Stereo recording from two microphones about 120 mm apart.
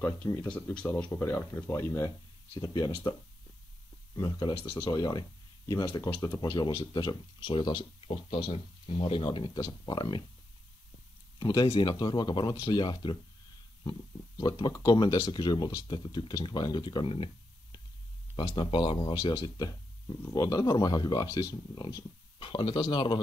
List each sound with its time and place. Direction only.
0.4 s speech: 20° left (ahead or behind)
4.2 s speech: 40° left (ahead or behind)
11.3 s speech: 35° left (ahead or behind)